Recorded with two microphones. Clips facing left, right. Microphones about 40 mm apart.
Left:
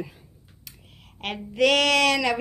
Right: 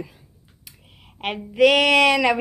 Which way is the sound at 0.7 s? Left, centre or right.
Centre.